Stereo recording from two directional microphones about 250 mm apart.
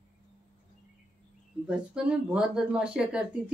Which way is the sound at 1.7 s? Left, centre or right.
Centre.